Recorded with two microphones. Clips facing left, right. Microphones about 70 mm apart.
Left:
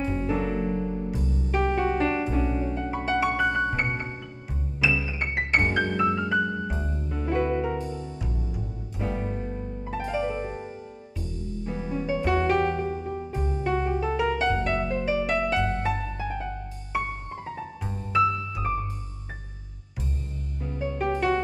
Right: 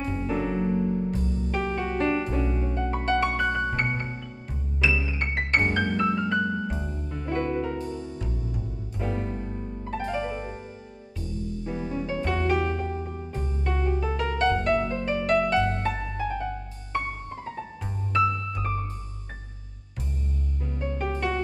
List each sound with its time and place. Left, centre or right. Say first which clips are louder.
0.0 s music: left 1 dB; centre
11.6 s music: left 2 dB; centre
20.6 s music: left 3 dB; centre